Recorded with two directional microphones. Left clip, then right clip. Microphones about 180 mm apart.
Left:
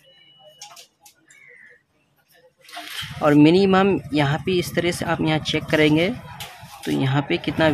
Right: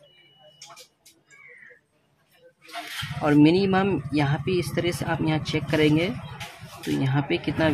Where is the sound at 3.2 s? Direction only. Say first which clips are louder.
Left 4 dB; 20° left (ahead or behind).